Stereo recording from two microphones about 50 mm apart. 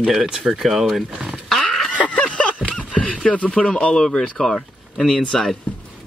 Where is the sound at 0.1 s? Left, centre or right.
Centre.